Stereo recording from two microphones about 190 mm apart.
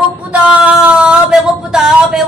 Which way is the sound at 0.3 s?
5° right (ahead or behind).